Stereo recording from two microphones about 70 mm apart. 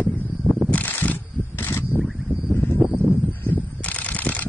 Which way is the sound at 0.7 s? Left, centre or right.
Left.